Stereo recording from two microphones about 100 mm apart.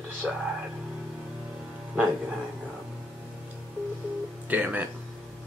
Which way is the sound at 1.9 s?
10° right (ahead or behind).